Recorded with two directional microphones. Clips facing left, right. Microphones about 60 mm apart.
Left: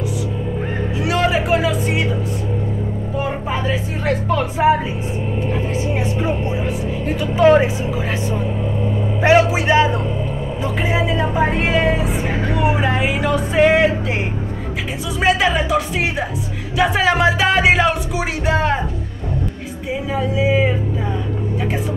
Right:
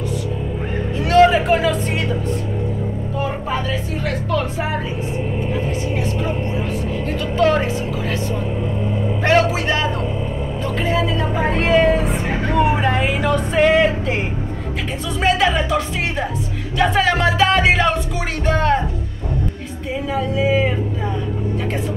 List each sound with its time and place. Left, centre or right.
1.0 s speech: centre
3.2 s music: centre
7.1 s music: centre
9.2 s music: centre
10.6 s a woman's voice: centre
15.1 s music: centre
19.9 s a woman's voice: centre